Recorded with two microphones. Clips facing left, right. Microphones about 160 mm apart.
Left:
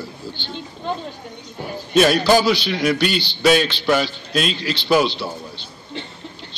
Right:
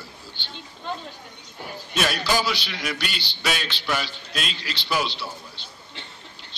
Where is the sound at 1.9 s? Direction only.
30° left (ahead or behind).